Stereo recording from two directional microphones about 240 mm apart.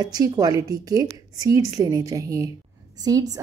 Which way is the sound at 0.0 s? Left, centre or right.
Centre.